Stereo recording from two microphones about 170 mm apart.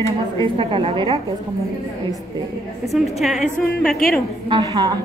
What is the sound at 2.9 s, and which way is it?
A woman's voice, centre (ahead or behind).